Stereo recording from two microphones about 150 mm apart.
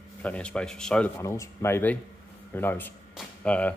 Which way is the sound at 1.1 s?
20° left (ahead or behind).